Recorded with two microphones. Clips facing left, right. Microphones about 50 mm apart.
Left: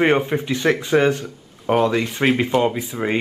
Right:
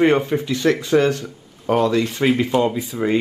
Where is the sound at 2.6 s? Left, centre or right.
Left.